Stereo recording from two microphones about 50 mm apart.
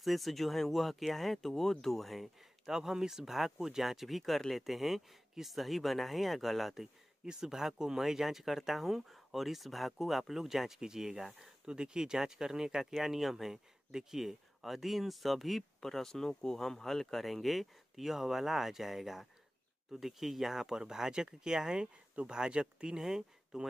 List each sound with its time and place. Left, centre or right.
0.0 s speech: centre